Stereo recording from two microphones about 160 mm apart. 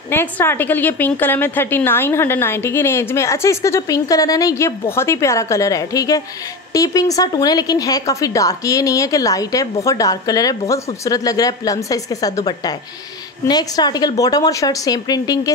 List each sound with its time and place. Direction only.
0.1 s a woman's voice: 15° left (ahead or behind)